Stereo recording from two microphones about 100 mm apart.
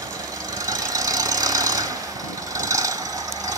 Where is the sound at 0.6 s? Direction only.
35° right (ahead or behind).